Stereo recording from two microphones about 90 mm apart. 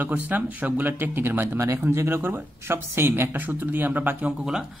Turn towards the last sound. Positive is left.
turn(degrees=-10)  # may be behind; listen again after turning